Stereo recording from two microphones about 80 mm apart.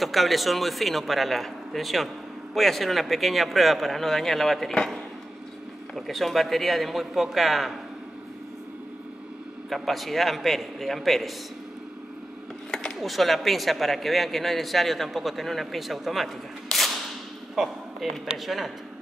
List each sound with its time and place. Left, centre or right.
0.0 s speech: centre
9.7 s speech: centre
12.7 s speech: centre
16.7 s whip: centre
17.6 s speech: centre